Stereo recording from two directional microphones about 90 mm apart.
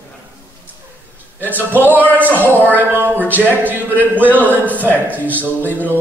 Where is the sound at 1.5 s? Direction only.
20° right (ahead or behind).